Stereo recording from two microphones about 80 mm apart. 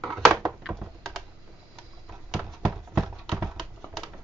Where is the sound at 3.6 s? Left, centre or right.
Centre.